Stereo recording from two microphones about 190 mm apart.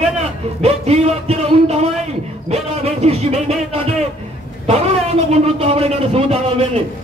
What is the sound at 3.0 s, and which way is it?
Speech, 35° right (ahead or behind).